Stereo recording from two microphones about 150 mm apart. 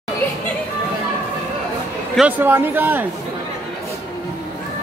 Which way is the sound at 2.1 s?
10° right (ahead or behind).